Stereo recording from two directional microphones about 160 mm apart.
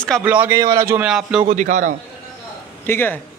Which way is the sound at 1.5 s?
50° right (ahead or behind).